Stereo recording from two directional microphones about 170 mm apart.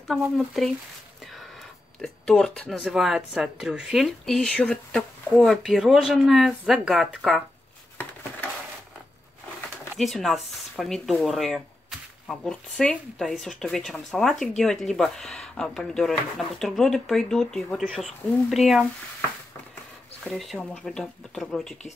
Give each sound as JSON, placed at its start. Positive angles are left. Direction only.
{"t": 0.1, "sound": "speech", "side_deg": 0}
{"t": 2.0, "sound": "speech", "side_deg": 5}
{"t": 9.9, "sound": "speech", "side_deg": 0}
{"t": 20.2, "sound": "speech", "side_deg": 0}